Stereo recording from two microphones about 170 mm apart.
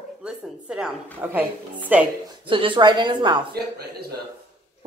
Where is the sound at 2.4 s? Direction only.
30° right (ahead or behind).